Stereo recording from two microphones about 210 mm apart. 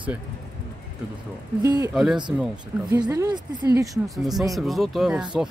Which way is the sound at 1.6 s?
15° right (ahead or behind).